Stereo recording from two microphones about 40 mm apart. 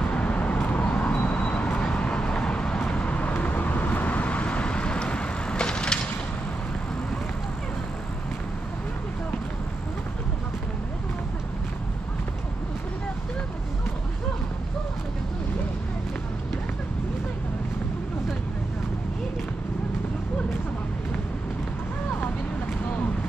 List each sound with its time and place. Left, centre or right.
0.0 s vehicle: left